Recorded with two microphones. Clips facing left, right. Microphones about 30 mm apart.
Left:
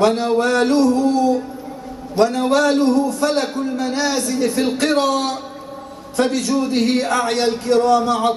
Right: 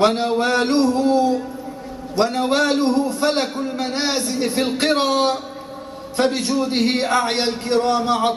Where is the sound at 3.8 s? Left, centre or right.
Right.